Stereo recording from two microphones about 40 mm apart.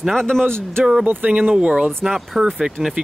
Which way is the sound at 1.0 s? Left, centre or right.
Right.